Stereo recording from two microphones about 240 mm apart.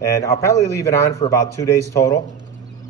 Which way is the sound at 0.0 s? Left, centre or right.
Centre.